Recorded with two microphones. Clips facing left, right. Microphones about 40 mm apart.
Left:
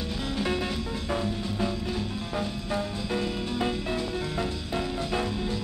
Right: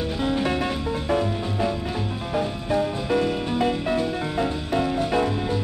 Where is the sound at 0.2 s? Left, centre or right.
Right.